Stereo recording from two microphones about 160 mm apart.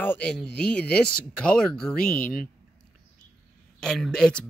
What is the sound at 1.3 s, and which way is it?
Speech, 5° left (ahead or behind).